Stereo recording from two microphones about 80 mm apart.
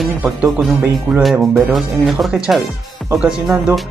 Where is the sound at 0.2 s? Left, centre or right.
Centre.